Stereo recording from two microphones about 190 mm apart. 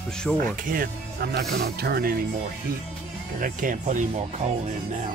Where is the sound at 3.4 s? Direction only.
45° right (ahead or behind).